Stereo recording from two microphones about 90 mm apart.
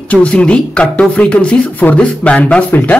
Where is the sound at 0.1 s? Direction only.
15° left (ahead or behind).